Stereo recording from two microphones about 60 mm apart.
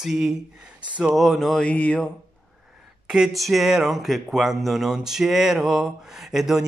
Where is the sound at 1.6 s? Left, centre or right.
Left.